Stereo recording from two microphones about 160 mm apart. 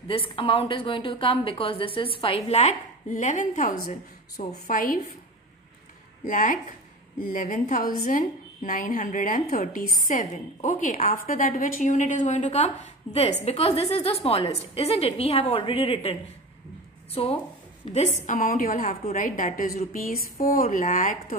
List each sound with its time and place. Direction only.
0.1 s a woman's voice: 35° left (ahead or behind); by 5.0 s 60° left (ahead or behind)
6.2 s a woman's voice: 55° left (ahead or behind)
10.0 s a woman's voice: 55° left (ahead or behind); by 17.4 s 35° left (ahead or behind)
17.9 s a woman's voice: 50° left (ahead or behind)